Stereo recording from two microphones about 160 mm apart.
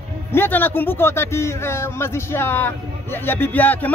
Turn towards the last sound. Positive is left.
turn(degrees=10)  # may be behind; listen again after turning